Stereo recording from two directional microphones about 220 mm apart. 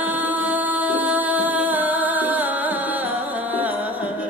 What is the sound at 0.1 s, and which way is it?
Music, 5° right (ahead or behind).